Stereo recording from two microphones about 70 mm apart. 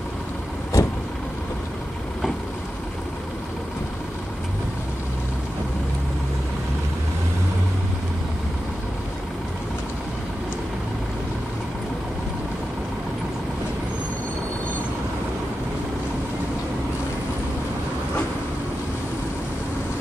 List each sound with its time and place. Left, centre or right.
0.7 s vehicle: left